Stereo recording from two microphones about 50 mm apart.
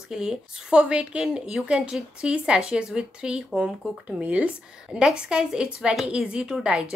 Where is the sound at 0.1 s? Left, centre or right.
Centre.